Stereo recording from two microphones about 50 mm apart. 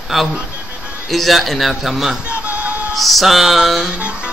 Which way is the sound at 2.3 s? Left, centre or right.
Right.